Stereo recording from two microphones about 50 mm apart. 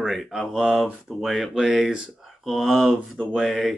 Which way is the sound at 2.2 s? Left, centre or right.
Centre.